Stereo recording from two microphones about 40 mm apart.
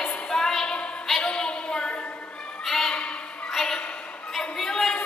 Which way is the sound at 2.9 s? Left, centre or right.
Left.